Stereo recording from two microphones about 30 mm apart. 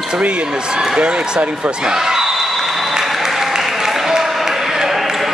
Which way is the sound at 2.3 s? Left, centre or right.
Centre.